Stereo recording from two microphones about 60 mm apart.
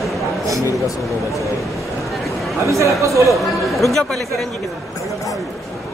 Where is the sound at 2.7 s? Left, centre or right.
Right.